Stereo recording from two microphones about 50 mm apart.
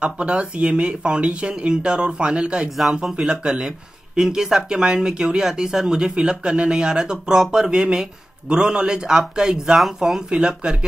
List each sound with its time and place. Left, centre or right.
0.0 s speech: right